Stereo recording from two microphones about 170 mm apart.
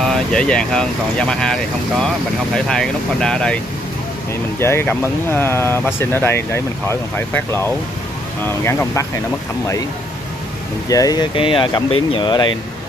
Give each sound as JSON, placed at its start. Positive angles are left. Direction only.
{"t": 0.0, "sound": "speech", "side_deg": 5}
{"t": 10.9, "sound": "speech", "side_deg": 20}